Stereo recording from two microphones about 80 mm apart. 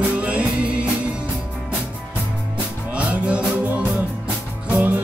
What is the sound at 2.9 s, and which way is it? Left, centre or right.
Music, centre.